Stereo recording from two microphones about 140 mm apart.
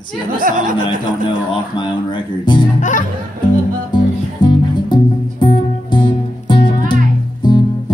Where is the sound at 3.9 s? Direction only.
35° left (ahead or behind).